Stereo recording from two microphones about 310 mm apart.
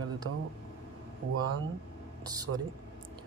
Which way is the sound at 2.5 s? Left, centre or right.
Right.